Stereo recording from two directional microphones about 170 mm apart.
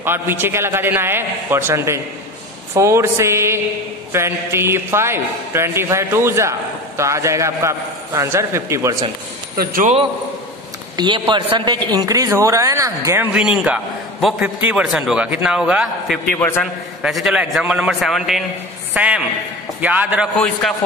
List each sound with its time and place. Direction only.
0.0 s a man's voice: 15° right (ahead or behind)
9.6 s a man's voice: 55° right (ahead or behind)
11.0 s speech: 30° right (ahead or behind)
13.3 s a man's voice: 5° right (ahead or behind)
16.3 s a man's voice: 15° left (ahead or behind)
17.0 s a man's voice: 5° right (ahead or behind)